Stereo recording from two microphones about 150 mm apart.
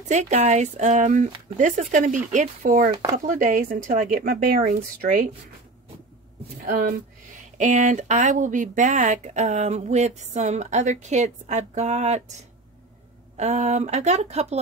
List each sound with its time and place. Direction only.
0.1 s speech: 50° right (ahead or behind); by 5.3 s 65° right (ahead or behind)
7.3 s speech: 55° right (ahead or behind)
13.4 s speech: 50° right (ahead or behind)